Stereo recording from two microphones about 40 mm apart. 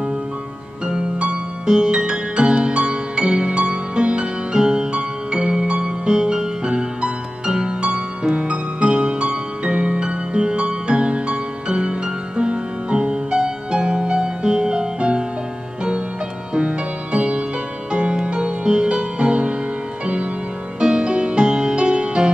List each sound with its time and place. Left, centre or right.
1.2 s music: centre
16.5 s music: right
20.8 s music: right